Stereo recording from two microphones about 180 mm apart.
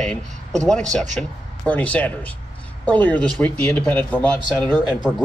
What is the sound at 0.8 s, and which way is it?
Speech, 40° right (ahead or behind).